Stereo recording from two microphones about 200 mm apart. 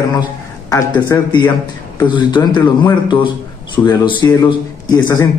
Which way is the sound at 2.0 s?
25° left (ahead or behind).